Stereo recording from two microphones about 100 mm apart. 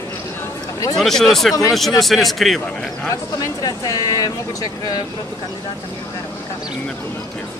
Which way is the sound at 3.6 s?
35° left (ahead or behind).